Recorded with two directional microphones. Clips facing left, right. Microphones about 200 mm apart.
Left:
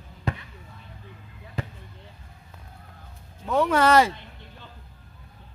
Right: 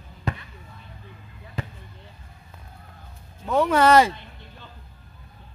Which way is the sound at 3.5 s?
15° right (ahead or behind).